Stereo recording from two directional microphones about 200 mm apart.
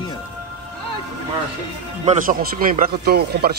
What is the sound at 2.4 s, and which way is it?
Speech, 45° right (ahead or behind).